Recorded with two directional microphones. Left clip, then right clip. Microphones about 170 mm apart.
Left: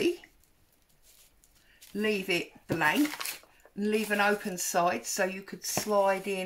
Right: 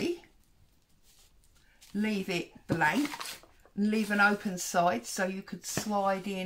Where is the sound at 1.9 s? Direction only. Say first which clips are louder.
Left 4 dB; 30° right (ahead or behind).